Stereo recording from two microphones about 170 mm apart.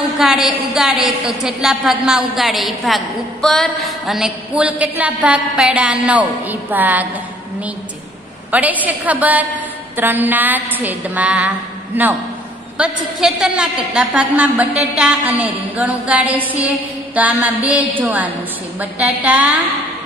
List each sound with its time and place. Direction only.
0.2 s a woman's voice: 5° right (ahead or behind)
8.5 s a woman's voice: 10° right (ahead or behind)